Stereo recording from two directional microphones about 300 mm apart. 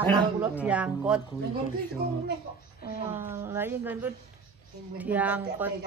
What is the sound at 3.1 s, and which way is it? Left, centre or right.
Speech, centre.